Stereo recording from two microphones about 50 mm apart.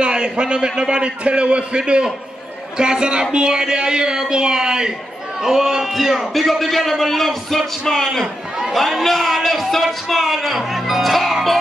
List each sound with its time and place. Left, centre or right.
0.0 s a man's voice: centre